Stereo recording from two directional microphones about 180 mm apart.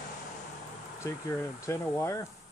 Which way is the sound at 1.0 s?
15° left (ahead or behind).